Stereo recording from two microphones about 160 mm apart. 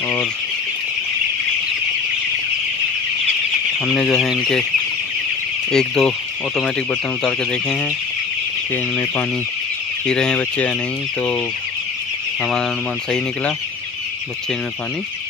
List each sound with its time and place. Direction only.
3.8 s fowl: 5° left (ahead or behind)
5.7 s fowl: 5° left (ahead or behind)
10.0 s fowl: 5° left (ahead or behind)